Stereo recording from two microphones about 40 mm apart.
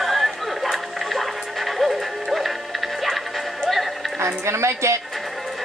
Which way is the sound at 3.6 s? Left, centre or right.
Centre.